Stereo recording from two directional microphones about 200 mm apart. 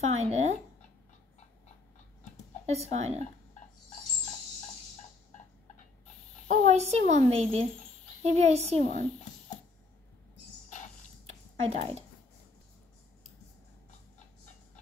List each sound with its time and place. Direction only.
0.1 s speech: 35° right (ahead or behind)
2.6 s speech: 35° right (ahead or behind)
6.4 s speech: 35° right (ahead or behind)
11.2 s a sound: 35° right (ahead or behind)